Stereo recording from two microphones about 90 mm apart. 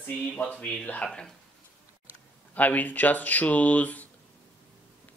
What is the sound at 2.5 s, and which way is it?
Speech, 20° left (ahead or behind).